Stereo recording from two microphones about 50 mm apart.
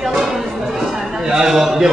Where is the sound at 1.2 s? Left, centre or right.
Centre.